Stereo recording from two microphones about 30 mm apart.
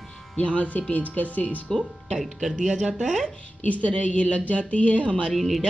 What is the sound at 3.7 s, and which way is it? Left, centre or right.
Speech, left.